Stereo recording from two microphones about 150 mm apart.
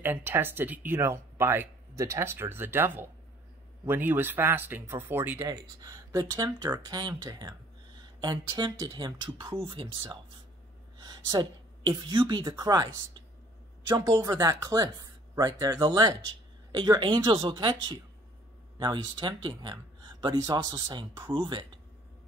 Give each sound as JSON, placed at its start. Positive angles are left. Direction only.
{"t": 0.0, "sound": "speech", "side_deg": -15}
{"t": 5.5, "sound": "speech", "side_deg": -25}
{"t": 11.0, "sound": "a woman's voice", "side_deg": -30}